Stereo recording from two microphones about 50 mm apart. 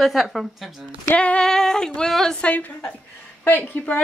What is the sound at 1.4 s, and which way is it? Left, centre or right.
Female singing, centre.